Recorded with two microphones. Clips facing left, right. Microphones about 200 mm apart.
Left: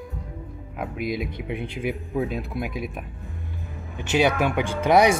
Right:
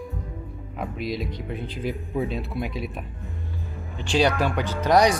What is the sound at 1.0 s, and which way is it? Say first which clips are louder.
Speech: left 2 dB; 55° left (ahead or behind).